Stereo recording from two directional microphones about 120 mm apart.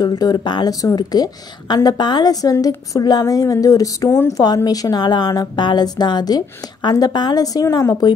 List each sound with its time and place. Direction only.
0.0 s a woman's voice: 35° left (ahead or behind)